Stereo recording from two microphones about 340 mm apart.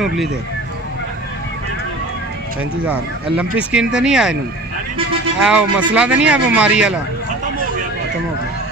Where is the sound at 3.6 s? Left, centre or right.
Centre.